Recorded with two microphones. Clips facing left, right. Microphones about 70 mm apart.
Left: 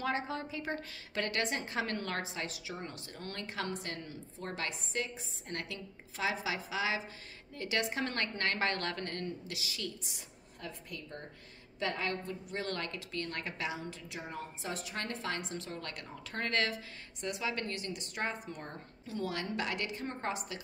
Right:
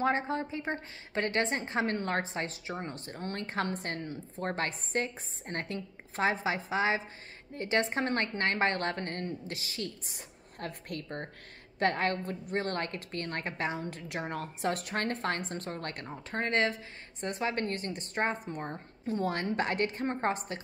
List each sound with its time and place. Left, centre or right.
0.0 s a woman's voice: right
17.2 s a woman's voice: right